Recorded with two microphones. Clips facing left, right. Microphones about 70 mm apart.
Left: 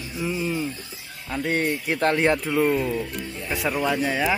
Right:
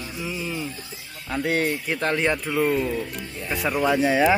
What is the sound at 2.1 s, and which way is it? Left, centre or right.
Speech, centre.